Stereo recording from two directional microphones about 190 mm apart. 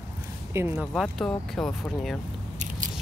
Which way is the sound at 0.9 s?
Centre (ahead or behind).